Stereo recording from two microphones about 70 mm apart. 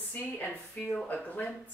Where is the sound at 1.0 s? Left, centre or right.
Left.